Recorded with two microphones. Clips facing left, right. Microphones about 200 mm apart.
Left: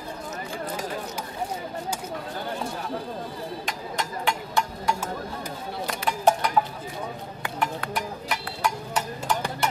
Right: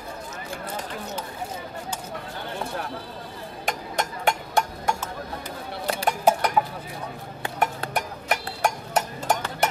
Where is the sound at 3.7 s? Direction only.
50° right (ahead or behind).